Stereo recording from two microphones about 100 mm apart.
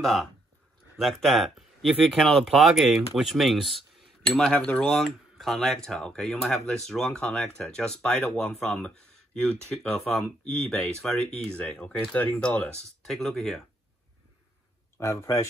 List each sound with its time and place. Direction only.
0.0 s speech: centre (ahead or behind)
15.0 s speech: 30° left (ahead or behind)